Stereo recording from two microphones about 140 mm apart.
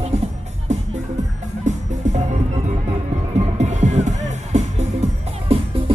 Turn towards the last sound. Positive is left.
turn(degrees=-50)  # may be behind; listen again after turning